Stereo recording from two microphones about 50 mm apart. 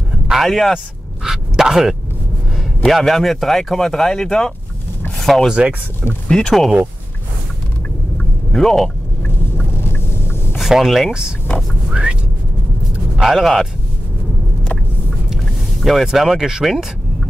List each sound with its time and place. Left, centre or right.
0.3 s speech: centre
1.2 s speech: centre
8.5 s speech: centre
9.8 s vehicle: left
10.6 s speech: centre
11.9 s a sound: centre
13.2 s speech: centre
14.6 s vehicle: left
15.8 s speech: centre